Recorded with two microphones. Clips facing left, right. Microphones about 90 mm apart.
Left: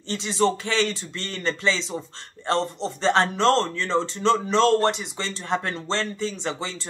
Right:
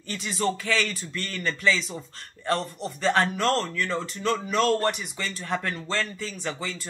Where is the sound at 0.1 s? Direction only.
25° left (ahead or behind).